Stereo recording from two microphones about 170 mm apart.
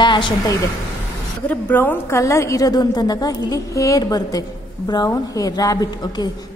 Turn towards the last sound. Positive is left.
turn(degrees=20)  # may be behind; listen again after turning